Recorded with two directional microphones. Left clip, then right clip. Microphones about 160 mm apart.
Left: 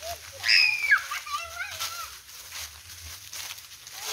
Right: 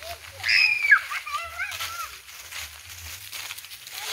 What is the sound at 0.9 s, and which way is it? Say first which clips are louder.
Children playing: right 5 dB; 90° left.